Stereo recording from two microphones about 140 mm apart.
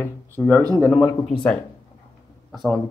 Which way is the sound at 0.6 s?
25° right (ahead or behind).